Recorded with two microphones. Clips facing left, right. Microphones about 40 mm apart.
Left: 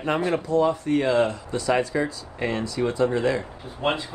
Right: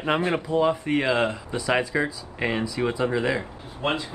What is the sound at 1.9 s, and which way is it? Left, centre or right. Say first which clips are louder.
Speech: even; right.